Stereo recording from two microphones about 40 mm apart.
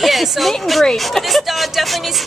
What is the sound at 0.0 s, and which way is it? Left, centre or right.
Speech, centre.